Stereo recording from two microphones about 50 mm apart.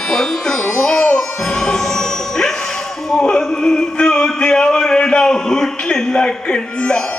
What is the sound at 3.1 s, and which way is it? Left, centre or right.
Speech, centre.